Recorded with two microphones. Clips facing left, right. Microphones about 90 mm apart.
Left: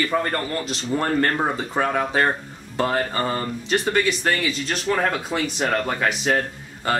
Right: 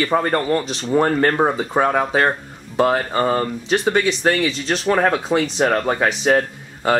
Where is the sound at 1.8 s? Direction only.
30° right (ahead or behind).